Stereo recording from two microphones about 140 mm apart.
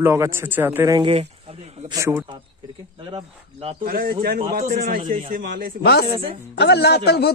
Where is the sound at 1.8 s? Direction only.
25° right (ahead or behind).